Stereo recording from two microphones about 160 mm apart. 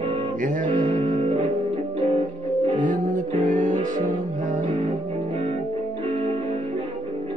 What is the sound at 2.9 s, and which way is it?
Music, 55° right (ahead or behind).